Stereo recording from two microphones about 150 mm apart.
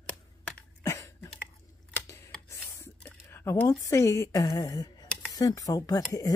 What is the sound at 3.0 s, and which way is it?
Speech, 15° left (ahead or behind).